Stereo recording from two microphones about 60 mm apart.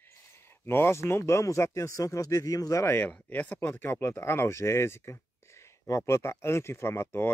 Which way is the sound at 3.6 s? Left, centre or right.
Left.